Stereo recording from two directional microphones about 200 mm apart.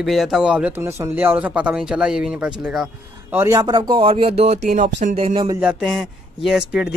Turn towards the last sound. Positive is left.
turn(degrees=-5)  # may be behind; listen again after turning